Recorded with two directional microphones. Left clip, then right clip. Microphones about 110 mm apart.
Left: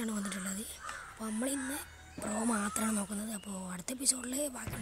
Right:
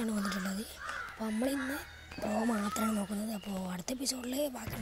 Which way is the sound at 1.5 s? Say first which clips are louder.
Right 3 dB; 90° left.